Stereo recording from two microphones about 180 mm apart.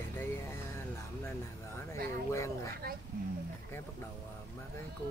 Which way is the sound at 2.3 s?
15° left (ahead or behind).